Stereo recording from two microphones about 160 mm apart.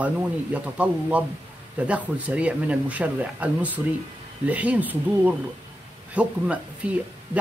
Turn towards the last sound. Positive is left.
turn(degrees=-10)  # may be behind; listen again after turning